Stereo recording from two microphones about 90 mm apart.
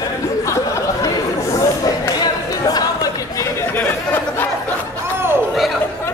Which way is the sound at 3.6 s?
20° left (ahead or behind).